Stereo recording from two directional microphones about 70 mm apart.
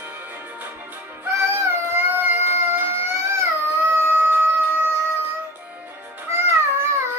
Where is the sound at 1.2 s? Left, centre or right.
Right.